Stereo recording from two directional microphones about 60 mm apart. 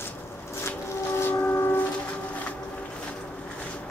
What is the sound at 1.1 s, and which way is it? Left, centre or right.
Train, left.